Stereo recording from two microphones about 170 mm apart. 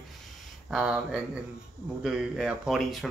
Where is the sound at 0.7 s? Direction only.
5° right (ahead or behind).